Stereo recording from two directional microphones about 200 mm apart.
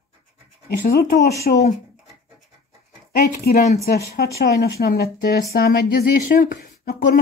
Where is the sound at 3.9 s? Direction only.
50° left (ahead or behind).